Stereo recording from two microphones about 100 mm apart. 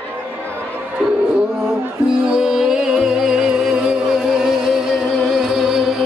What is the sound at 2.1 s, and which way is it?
Music, 10° right (ahead or behind).